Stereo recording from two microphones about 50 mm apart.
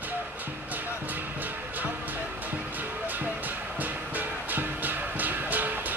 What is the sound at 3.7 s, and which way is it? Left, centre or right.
Music, right.